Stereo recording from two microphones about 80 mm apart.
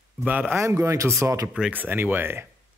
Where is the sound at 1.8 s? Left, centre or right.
Right.